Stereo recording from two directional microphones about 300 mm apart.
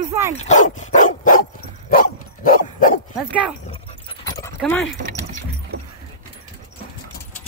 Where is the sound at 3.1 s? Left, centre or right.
Centre.